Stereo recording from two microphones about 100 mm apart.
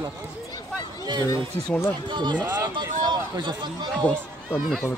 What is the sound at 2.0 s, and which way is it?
Speech, 50° right (ahead or behind).